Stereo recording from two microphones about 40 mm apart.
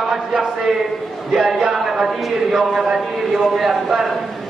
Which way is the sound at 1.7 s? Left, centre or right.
Centre.